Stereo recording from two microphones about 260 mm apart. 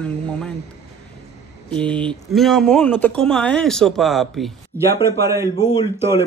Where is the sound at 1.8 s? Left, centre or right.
Centre.